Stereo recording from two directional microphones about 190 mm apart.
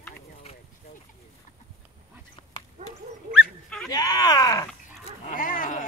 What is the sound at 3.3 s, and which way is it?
Dog, centre (ahead or behind).